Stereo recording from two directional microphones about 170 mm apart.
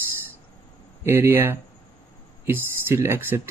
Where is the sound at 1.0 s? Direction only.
15° right (ahead or behind).